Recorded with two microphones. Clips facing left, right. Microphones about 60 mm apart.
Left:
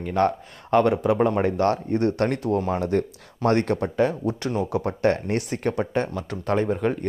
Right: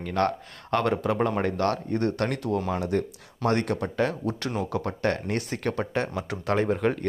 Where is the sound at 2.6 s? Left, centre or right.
Left.